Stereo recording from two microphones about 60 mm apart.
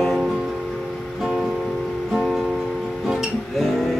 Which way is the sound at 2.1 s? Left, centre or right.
Centre.